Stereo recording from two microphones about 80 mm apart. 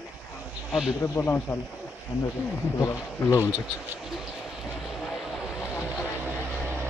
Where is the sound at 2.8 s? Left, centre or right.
Left.